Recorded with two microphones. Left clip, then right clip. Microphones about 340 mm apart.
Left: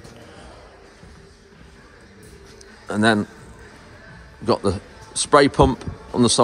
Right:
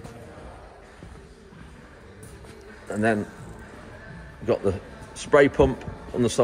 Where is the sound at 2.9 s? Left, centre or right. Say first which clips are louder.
Left 5 dB; centre.